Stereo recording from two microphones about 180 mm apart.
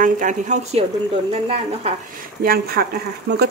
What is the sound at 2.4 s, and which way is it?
Speech, 55° right (ahead or behind).